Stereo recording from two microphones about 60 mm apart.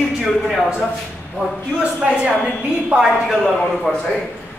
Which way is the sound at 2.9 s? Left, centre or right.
Centre.